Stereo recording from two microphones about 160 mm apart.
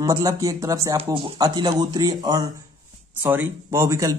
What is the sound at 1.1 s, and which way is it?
Speech, 30° right (ahead or behind).